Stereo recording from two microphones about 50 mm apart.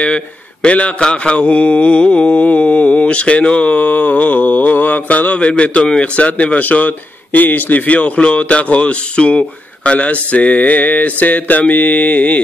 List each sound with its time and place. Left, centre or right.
0.0 s speech: left
9.8 s mantra: left